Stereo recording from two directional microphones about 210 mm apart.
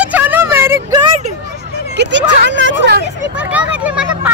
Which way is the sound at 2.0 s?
55° right (ahead or behind).